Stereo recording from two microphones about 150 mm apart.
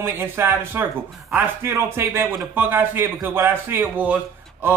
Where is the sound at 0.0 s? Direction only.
15° right (ahead or behind).